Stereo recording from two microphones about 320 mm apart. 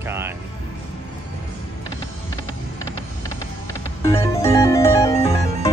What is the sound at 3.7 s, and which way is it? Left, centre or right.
Music, centre.